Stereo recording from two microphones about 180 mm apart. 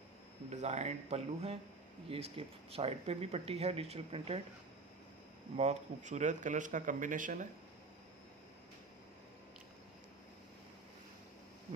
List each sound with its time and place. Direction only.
0.5 s speech: 40° right (ahead or behind)
5.6 s speech: 40° right (ahead or behind)